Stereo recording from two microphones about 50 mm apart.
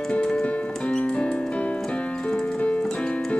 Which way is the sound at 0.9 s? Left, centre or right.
Left.